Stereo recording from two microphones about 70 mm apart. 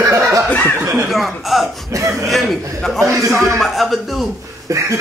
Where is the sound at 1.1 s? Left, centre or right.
Centre.